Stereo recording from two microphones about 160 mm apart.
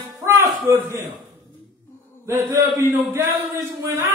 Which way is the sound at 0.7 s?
15° right (ahead or behind).